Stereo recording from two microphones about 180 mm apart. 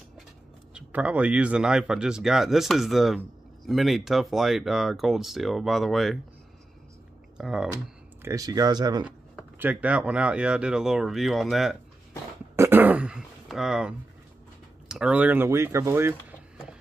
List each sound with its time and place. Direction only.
0.7 s speech: 5° right (ahead or behind)
7.3 s speech: 5° right (ahead or behind)
7.7 s speech: 15° right (ahead or behind)
9.0 s speech: 5° right (ahead or behind)
12.5 s throat clearing: 10° right (ahead or behind)
14.9 s speech: 5° right (ahead or behind)